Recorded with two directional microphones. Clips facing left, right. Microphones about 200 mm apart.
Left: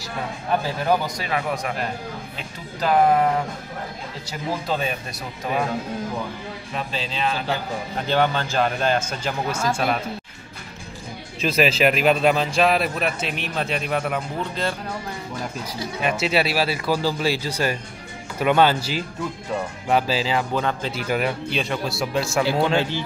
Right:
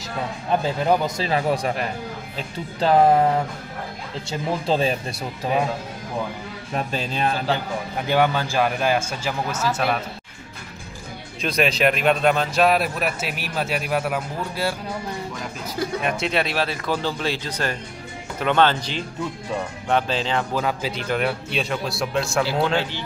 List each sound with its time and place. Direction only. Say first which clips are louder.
0.8 s speech: right 2 dB; 25° right (ahead or behind)
4.3 s speech: right 3 dB; 30° right (ahead or behind)
6.7 s a man's voice: right 4 dB; 50° right (ahead or behind)
8.1 s a man's voice: right 1 dB; 10° right (ahead or behind)
11.4 s a man's voice: left 1 dB; 5° left (ahead or behind)
16.0 s a man's voice: left 5 dB; 5° left (ahead or behind)
20.6 s a man's voice: even; 5° right (ahead or behind)